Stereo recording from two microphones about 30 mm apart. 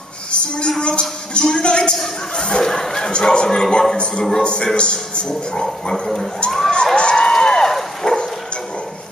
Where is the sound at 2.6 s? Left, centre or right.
Centre.